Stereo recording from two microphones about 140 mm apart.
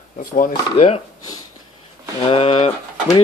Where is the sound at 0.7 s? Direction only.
45° left (ahead or behind).